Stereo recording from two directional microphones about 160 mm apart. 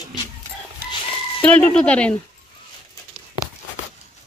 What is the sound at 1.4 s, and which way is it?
Speech, 10° left (ahead or behind).